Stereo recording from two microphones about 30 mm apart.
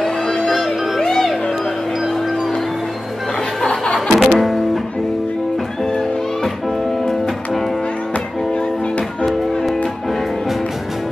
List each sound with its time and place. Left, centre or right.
0.5 s music: centre
3.6 s music: left
4.1 s music: centre
9.2 s music: centre